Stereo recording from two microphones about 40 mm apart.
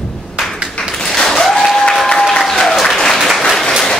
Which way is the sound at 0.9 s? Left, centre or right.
Centre.